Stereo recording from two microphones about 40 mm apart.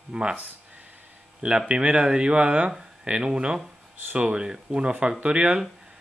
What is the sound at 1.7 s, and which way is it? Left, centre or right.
Speech, right.